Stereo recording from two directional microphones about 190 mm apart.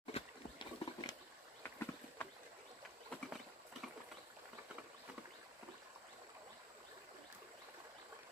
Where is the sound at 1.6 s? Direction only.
10° left (ahead or behind).